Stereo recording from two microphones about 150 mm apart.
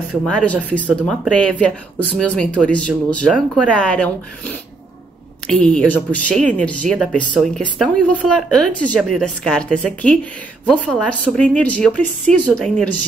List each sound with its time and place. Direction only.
0.3 s speech: 10° left (ahead or behind)